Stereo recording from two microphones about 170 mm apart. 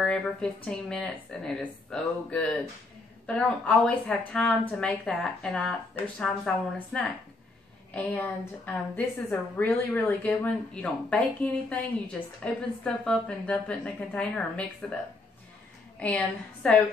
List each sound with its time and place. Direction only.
0.0 s a woman's voice: 5° left (ahead or behind)
16.0 s a woman's voice: 10° left (ahead or behind)